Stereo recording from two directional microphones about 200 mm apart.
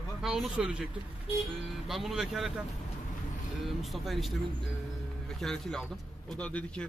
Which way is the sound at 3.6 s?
Centre (ahead or behind).